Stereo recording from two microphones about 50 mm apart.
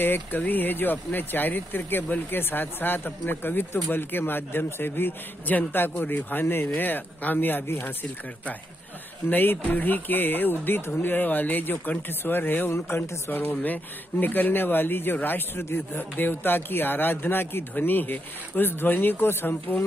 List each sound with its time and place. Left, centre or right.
0.0 s speech: left
5.5 s speech: left
9.3 s speech: left